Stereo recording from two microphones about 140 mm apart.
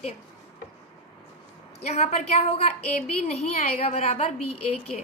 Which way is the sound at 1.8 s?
50° left (ahead or behind).